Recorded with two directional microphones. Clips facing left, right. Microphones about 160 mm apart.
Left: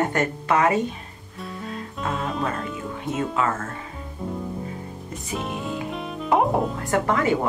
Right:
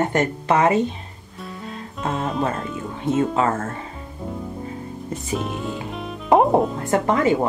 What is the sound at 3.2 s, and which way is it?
Speech, 30° right (ahead or behind).